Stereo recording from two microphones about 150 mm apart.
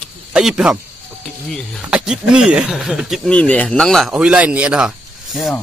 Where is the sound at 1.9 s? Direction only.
5° right (ahead or behind).